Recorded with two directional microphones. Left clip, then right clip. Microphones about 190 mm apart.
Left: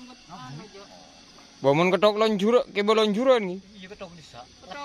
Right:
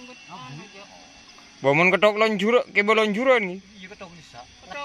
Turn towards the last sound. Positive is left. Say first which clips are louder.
# right 1 dB
turn(degrees=0)  # may be behind; listen again after turning